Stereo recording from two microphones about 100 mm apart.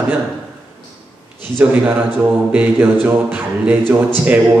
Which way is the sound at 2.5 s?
15° right (ahead or behind).